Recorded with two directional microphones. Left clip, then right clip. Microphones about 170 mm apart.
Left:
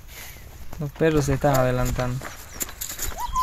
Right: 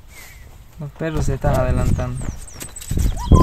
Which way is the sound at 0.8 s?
15° left (ahead or behind).